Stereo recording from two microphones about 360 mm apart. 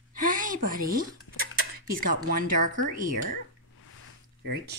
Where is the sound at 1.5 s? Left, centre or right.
Right.